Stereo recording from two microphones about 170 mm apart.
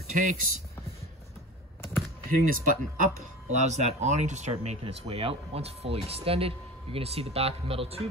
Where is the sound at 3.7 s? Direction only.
40° right (ahead or behind).